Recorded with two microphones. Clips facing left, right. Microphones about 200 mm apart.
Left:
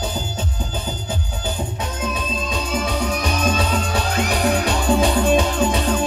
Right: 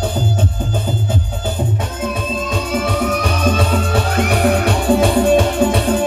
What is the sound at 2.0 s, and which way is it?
Music, 50° right (ahead or behind).